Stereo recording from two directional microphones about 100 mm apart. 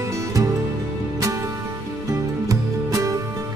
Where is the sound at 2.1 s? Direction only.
35° right (ahead or behind).